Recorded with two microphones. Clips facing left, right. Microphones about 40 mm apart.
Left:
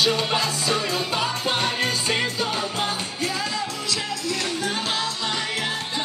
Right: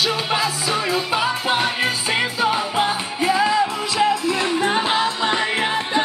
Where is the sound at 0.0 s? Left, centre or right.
Centre.